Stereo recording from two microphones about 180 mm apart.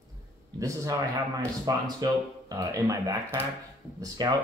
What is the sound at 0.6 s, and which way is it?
Speech, 20° right (ahead or behind).